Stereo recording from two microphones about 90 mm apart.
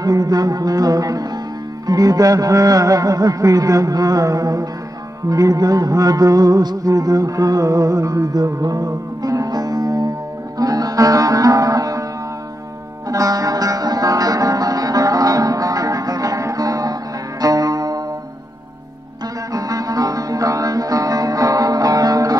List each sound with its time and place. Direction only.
0.0 s music: 40° right (ahead or behind)
13.1 s music: 40° right (ahead or behind)
19.5 s music: 40° right (ahead or behind)